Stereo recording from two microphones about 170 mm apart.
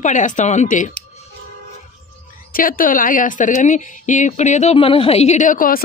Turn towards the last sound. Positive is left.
turn(degrees=55)  # may be behind; listen again after turning